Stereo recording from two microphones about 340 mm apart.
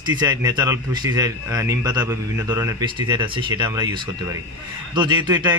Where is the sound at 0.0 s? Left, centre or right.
Centre.